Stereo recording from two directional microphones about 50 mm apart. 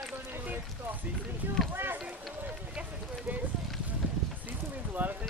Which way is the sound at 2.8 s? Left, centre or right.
Right.